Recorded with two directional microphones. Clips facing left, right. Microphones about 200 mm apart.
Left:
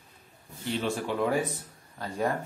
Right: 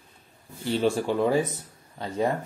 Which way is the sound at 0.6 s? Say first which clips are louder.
Right 6 dB; 35° right (ahead or behind).